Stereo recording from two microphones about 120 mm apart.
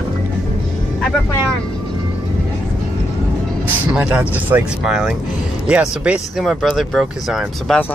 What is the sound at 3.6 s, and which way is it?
Speech, 10° right (ahead or behind).